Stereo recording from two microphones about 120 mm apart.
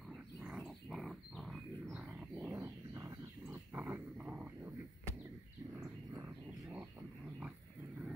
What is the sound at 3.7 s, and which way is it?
Dog, 15° right (ahead or behind).